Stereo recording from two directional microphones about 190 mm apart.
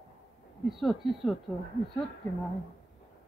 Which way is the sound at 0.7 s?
Centre (ahead or behind).